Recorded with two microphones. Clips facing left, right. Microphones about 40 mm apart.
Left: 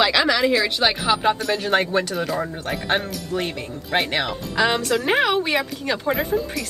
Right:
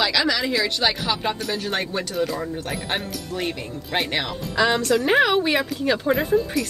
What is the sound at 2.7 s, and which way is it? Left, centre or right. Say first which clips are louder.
Speech: left 8 dB; centre.